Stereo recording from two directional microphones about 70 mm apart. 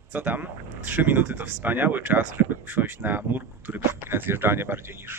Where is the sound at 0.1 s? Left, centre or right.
Right.